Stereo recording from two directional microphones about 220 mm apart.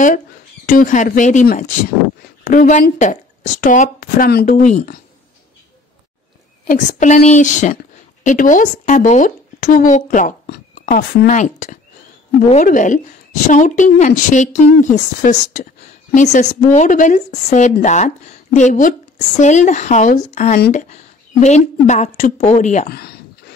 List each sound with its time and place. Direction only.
0.7 s speech: 40° left (ahead or behind)
6.7 s speech: 35° left (ahead or behind)